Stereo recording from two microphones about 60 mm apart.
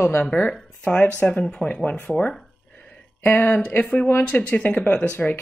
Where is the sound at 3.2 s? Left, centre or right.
Left.